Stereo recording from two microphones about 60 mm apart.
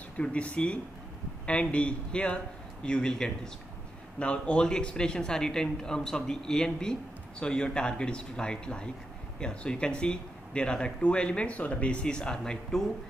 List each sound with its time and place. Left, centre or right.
0.2 s a man's voice: centre